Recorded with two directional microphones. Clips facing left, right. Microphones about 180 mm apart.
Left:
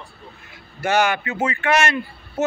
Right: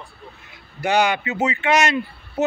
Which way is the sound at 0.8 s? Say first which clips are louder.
Even; 15° right (ahead or behind).